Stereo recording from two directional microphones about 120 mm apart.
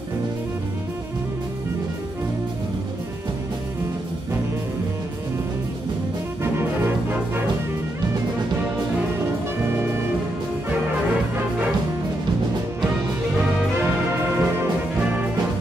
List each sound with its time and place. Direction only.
6.4 s music: 20° right (ahead or behind)
9.7 s music: 20° right (ahead or behind)
14.3 s brass instrument: 20° right (ahead or behind)